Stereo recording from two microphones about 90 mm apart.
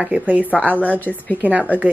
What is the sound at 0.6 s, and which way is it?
Speech, 15° left (ahead or behind).